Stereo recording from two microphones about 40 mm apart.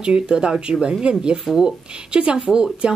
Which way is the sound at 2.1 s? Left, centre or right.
Right.